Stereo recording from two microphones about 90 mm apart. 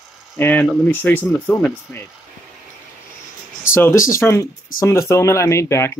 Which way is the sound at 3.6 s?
30° left (ahead or behind).